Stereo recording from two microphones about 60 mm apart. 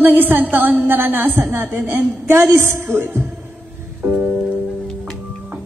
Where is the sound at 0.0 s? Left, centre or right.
Right.